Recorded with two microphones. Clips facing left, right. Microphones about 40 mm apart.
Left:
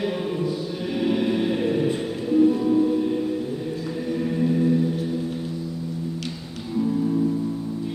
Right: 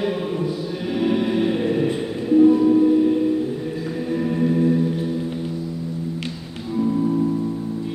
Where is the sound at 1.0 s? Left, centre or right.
Centre.